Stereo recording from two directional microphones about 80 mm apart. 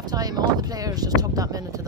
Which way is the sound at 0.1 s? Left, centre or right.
Right.